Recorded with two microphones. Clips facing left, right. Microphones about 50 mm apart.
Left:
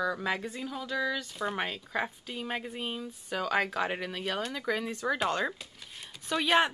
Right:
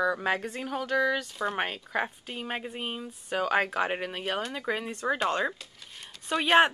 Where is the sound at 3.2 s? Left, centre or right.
Right.